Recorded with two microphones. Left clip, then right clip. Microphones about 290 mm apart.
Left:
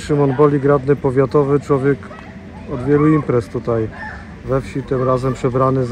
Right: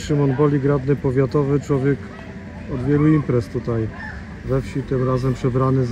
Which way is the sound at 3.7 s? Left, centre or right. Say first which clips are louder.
Left 6 dB; left.